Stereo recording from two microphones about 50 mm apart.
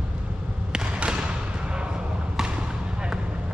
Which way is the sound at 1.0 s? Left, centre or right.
Centre.